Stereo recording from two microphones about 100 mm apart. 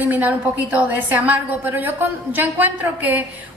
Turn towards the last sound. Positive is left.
turn(degrees=-15)  # may be behind; listen again after turning